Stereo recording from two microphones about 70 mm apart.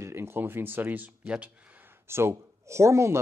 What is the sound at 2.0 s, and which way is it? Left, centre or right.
Speech, right.